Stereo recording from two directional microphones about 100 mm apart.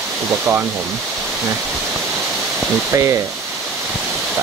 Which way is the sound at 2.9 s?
30° right (ahead or behind).